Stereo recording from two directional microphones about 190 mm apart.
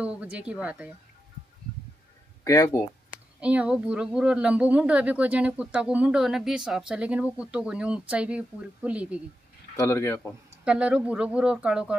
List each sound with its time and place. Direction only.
0.0 s a woman's voice: 5° right (ahead or behind)
2.4 s a man's voice: 15° left (ahead or behind)
3.3 s a woman's voice: 5° right (ahead or behind)
9.8 s a man's voice: 15° left (ahead or behind)
10.6 s a woman's voice: 5° right (ahead or behind)